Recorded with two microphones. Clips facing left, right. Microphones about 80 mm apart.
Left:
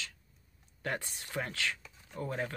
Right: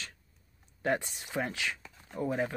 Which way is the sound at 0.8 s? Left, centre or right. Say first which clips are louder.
Right 6 dB; centre.